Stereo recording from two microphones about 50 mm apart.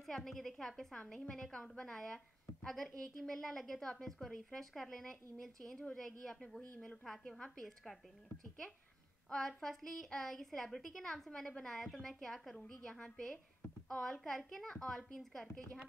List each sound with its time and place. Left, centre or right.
0.0 s a woman's voice: centre
7.6 s a woman's voice: centre
9.3 s a woman's voice: centre